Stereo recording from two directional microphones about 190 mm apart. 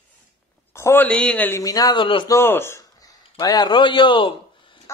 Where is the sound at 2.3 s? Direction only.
10° left (ahead or behind).